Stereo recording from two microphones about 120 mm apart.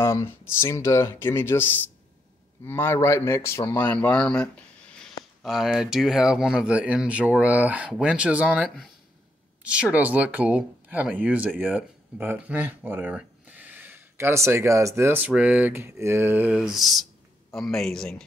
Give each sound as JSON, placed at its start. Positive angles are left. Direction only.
{"t": 0.0, "sound": "speech", "side_deg": 25}
{"t": 16.5, "sound": "a man's voice", "side_deg": 0}